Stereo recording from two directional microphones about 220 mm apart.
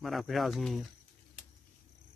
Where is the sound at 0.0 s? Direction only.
Centre (ahead or behind).